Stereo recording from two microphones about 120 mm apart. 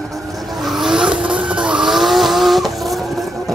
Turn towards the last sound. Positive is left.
turn(degrees=0)  # may be behind; listen again after turning